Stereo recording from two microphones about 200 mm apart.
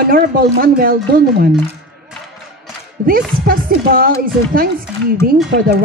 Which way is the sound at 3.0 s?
45° right (ahead or behind).